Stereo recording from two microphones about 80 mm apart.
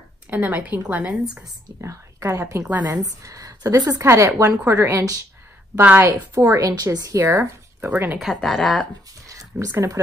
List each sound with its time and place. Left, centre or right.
0.3 s a woman's voice: right
1.8 s speech: right
4.0 s a woman's voice: right
5.8 s a woman's voice: right
6.7 s speech: right
7.8 s a woman's voice: right
8.2 s speech: centre
9.3 s a sound: right
9.7 s a woman's voice: right